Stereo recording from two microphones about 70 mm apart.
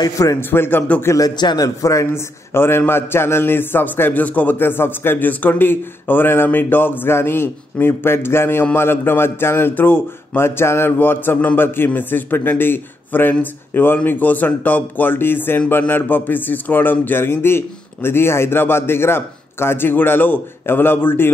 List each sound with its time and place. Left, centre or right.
0.0 s a man's voice: left
0.4 s speech: left
1.0 s speech: left
1.3 s a man's voice: left
1.8 s speech: left
2.0 s a man's voice: left